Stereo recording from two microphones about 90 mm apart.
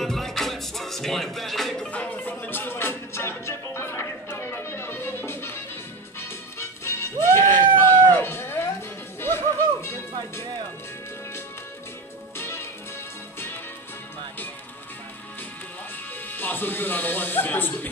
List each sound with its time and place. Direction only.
0.0 s music: 5° left (ahead or behind)
1.9 s music: 15° left (ahead or behind)
6.6 s music: 30° left (ahead or behind)
7.8 s a sound: 25° left (ahead or behind)
9.2 s music: 25° left (ahead or behind)
12.4 s music: 30° left (ahead or behind)
16.3 s speech: 20° left (ahead or behind)